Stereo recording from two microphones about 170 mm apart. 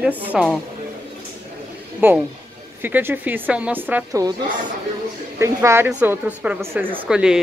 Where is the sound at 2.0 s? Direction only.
10° right (ahead or behind).